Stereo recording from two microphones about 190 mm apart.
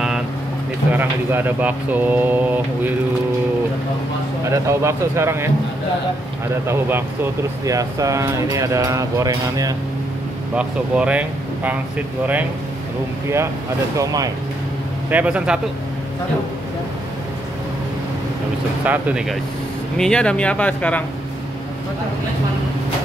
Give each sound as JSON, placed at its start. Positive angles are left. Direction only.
{"t": 0.9, "sound": "speech", "side_deg": -10}
{"t": 4.5, "sound": "speech", "side_deg": -15}
{"t": 6.7, "sound": "speech", "side_deg": -10}
{"t": 10.5, "sound": "speech", "side_deg": -5}
{"t": 13.9, "sound": "speech", "side_deg": -20}
{"t": 15.0, "sound": "speech", "side_deg": -5}
{"t": 18.9, "sound": "speech", "side_deg": -5}
{"t": 20.0, "sound": "speech", "side_deg": 5}